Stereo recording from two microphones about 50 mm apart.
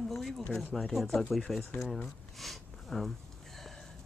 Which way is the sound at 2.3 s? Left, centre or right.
Centre.